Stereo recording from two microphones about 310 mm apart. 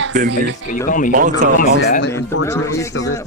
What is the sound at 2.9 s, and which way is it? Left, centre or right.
Speech, left.